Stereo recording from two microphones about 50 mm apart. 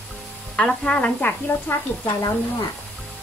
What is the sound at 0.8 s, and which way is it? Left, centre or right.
Speech, left.